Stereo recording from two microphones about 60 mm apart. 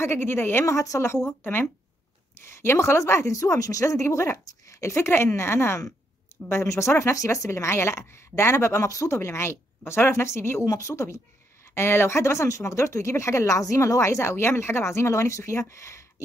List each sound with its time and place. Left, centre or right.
0.0 s a woman's voice: left
0.7 s speech: left
1.0 s speech: left
1.4 s a woman's voice: left
2.3 s speech: left
10.6 s speech: left
11.7 s speech: left